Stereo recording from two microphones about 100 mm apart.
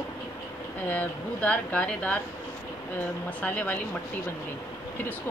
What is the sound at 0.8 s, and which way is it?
Speech, 15° left (ahead or behind).